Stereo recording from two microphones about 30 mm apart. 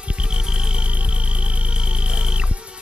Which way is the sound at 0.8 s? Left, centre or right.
Right.